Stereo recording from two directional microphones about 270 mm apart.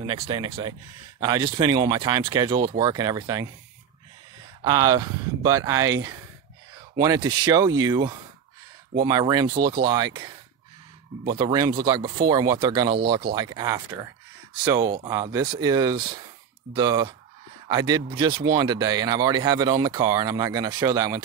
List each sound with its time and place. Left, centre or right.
0.0 s speech: centre
4.6 s speech: centre
7.0 s speech: centre
11.3 s speech: centre